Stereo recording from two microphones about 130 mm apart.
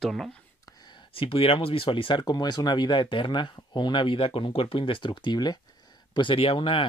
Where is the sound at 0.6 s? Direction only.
35° left (ahead or behind).